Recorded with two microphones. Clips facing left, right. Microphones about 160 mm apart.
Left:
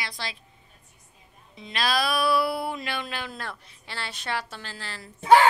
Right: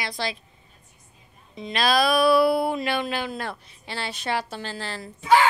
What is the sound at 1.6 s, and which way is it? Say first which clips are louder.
A woman's voice: right 5 dB; 20° right (ahead or behind).